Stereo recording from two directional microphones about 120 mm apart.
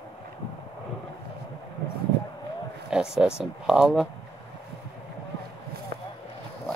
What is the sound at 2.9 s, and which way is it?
Speech, 5° right (ahead or behind).